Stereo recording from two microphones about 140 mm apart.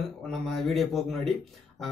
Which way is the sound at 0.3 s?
Centre (ahead or behind).